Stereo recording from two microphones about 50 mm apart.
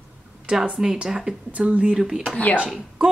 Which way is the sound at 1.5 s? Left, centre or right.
Right.